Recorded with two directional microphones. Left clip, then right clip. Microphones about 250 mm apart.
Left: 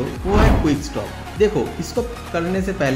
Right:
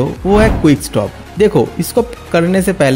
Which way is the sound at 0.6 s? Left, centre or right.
Right.